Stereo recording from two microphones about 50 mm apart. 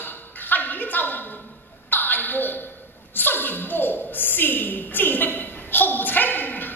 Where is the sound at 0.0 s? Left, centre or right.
Left.